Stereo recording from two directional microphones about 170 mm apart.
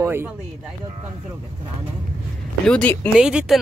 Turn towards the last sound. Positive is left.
turn(degrees=-5)  # may be behind; listen again after turning